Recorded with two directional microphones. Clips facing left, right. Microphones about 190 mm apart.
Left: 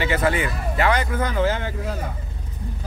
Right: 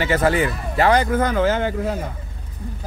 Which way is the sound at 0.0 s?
45° right (ahead or behind).